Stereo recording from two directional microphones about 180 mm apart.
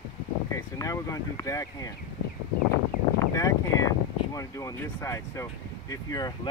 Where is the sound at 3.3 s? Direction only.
20° left (ahead or behind).